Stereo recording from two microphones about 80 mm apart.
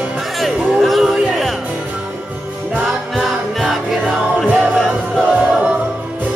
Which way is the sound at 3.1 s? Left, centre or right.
Centre.